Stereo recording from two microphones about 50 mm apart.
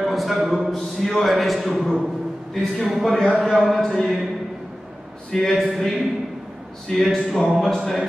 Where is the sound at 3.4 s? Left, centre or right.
Centre.